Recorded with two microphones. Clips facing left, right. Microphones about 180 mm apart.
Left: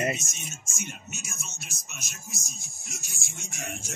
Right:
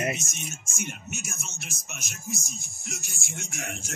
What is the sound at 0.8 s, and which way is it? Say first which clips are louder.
Speech: right 4 dB; 55° right (ahead or behind).